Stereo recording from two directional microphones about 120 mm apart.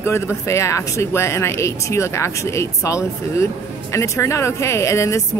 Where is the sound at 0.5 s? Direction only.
25° left (ahead or behind).